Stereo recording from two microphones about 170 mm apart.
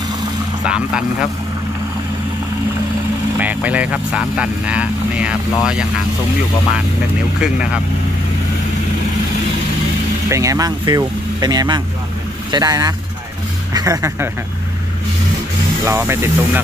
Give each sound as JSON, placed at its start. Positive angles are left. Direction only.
{"t": 0.7, "sound": "speech", "side_deg": -5}
{"t": 3.3, "sound": "speech", "side_deg": -10}
{"t": 7.3, "sound": "speech", "side_deg": -5}
{"t": 10.3, "sound": "speech", "side_deg": -20}
{"t": 15.8, "sound": "speech", "side_deg": -15}